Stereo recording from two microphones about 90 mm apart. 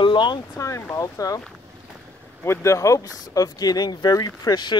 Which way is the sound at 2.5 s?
35° left (ahead or behind).